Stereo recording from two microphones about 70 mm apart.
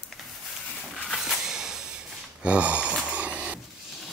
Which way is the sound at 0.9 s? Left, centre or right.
Centre.